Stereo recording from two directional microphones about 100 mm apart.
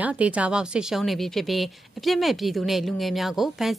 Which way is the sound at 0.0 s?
15° right (ahead or behind).